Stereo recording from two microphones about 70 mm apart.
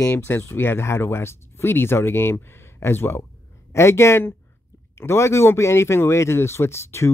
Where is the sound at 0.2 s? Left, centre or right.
Left.